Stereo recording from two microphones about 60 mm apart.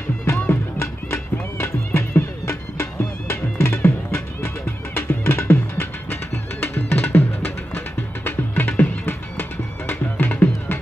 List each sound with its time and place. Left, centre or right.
0.2 s music: left